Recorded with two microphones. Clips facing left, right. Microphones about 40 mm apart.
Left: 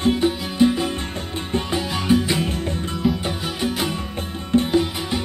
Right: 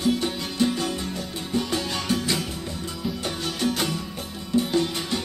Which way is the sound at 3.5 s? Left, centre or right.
Centre.